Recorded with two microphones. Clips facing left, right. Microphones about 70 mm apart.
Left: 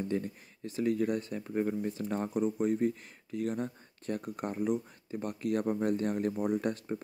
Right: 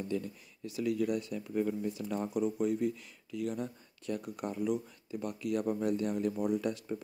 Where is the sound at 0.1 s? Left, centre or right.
Left.